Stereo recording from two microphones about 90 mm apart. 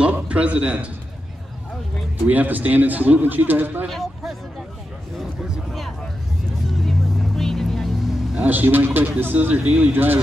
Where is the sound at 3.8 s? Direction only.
5° right (ahead or behind).